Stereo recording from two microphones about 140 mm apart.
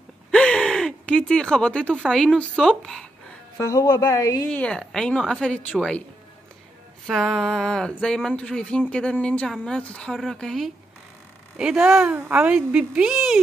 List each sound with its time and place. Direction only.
0.3 s speech: 5° left (ahead or behind)
3.5 s a woman's voice: 20° left (ahead or behind)
4.5 s speech: 10° left (ahead or behind)
7.1 s speech: centre (ahead or behind)